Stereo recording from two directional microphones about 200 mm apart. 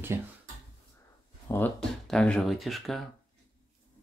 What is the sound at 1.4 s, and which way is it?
Speech, 10° left (ahead or behind).